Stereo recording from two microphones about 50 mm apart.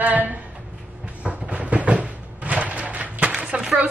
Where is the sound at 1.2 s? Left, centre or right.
Right.